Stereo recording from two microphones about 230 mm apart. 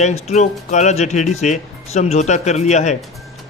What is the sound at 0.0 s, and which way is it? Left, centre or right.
A man's voice, left.